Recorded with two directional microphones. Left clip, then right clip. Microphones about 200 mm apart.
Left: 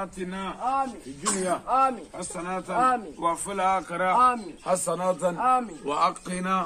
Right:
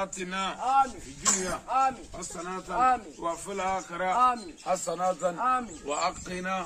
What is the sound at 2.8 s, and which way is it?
A man's voice, 45° left (ahead or behind).